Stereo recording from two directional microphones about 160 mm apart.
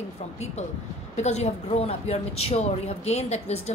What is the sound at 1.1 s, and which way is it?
A woman's voice, 45° left (ahead or behind).